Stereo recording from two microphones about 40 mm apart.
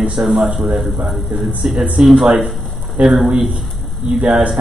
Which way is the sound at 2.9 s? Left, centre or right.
Centre.